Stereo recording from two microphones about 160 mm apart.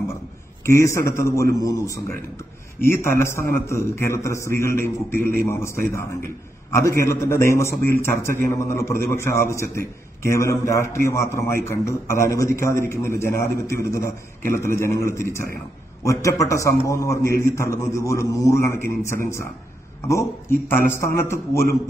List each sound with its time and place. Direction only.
0.7 s a man's voice: 20° left (ahead or behind)